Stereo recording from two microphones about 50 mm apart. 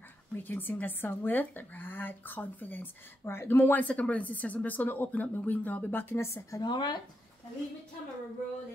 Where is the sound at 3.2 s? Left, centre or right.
Left.